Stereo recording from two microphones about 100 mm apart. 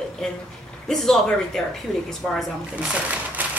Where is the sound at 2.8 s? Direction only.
15° right (ahead or behind).